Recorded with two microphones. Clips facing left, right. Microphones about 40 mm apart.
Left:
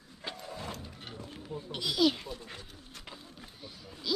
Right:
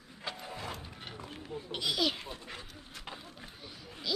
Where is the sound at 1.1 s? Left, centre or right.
Right.